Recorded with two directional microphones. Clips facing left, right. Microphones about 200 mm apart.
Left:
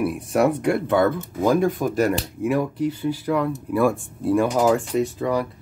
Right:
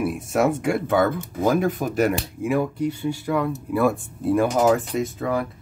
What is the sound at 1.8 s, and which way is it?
Speech, 30° right (ahead or behind).